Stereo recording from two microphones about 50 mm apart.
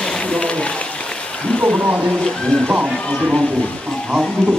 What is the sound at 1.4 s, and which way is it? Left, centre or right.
Wild animals, centre.